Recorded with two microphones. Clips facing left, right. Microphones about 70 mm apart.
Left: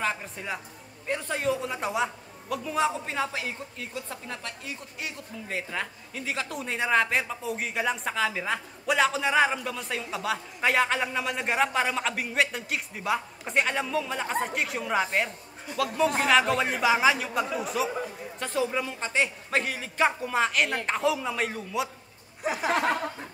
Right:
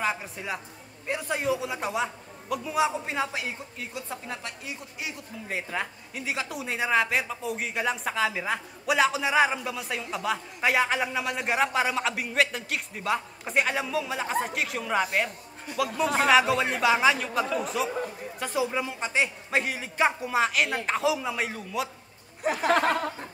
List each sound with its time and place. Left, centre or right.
0.0 s a man's voice: centre
16.3 s a man's voice: centre
20.1 s a man's voice: centre
22.5 s speech: right